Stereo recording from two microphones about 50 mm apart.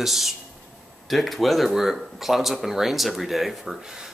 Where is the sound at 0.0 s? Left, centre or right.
Centre.